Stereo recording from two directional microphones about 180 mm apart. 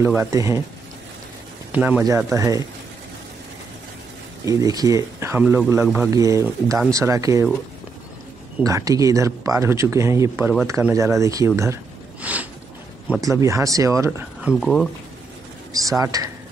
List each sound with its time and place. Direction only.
0.0 s speech: 15° right (ahead or behind)
1.7 s speech: 10° right (ahead or behind)
4.5 s speech: 20° right (ahead or behind)
8.6 s speech: 20° right (ahead or behind)
14.6 s speech: 5° left (ahead or behind)
15.7 s speech: 20° right (ahead or behind)